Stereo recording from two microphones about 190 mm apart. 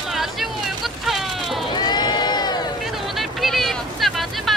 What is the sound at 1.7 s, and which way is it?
Crowd, 20° left (ahead or behind).